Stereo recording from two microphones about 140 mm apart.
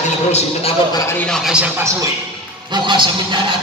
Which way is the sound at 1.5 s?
10° right (ahead or behind).